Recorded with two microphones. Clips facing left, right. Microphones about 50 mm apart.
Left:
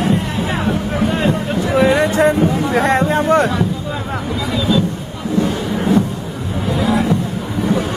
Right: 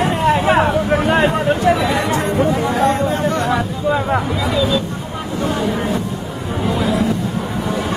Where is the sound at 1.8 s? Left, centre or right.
Left.